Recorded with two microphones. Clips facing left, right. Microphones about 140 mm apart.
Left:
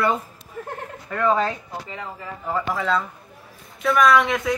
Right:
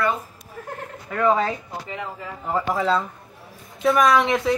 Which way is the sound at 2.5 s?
25° right (ahead or behind).